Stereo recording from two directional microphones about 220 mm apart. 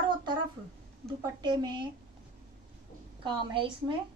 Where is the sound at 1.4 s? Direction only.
20° right (ahead or behind).